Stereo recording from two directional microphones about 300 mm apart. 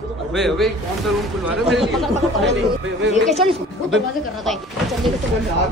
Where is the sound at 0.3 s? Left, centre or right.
Centre.